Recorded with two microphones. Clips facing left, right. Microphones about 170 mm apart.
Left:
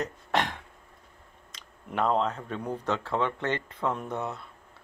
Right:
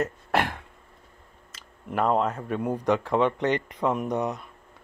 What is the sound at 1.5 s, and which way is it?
Speech, 5° right (ahead or behind).